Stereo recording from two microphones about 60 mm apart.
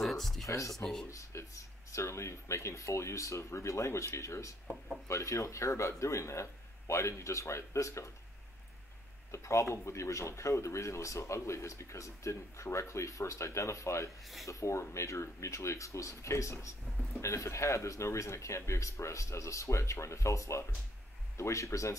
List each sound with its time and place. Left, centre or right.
0.0 s a sound: centre
0.5 s speech: left
9.3 s speech: left